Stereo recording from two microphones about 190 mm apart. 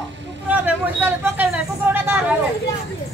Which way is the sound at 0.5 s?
10° right (ahead or behind).